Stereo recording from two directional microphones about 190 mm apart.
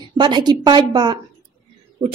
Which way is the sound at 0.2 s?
20° right (ahead or behind).